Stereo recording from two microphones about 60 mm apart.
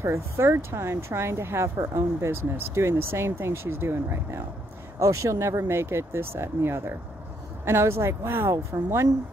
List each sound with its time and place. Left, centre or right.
0.0 s speech: right
4.9 s speech: right
8.5 s speech: right